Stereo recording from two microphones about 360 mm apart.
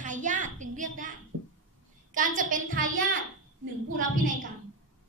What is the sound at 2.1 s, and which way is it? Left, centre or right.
Speech, right.